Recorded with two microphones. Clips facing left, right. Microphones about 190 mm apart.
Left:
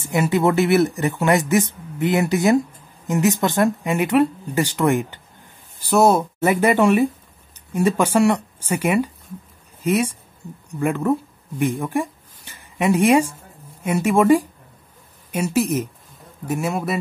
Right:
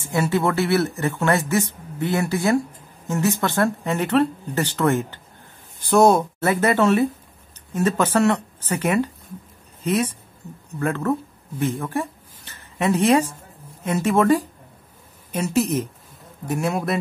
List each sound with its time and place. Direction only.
0.1 s speech: 15° left (ahead or behind)